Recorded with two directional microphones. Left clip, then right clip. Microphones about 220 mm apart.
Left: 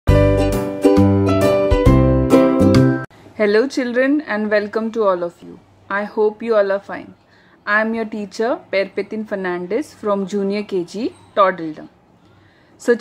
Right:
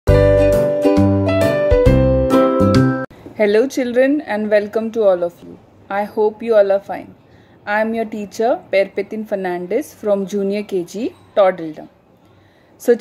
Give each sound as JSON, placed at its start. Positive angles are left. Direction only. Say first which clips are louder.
{"t": 0.3, "sound": "music", "louder": "right 6 dB", "side_deg": 5}
{"t": 3.3, "sound": "a woman's voice", "louder": "right 1 dB", "side_deg": 5}